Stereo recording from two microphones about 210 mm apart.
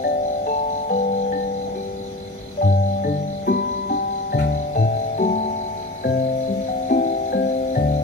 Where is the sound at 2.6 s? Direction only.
45° left (ahead or behind).